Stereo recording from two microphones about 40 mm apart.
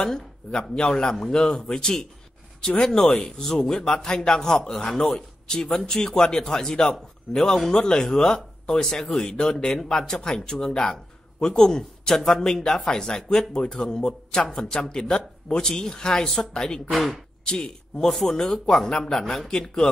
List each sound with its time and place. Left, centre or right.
0.0 s a man's voice: centre
16.9 s speech: centre
17.5 s a man's voice: centre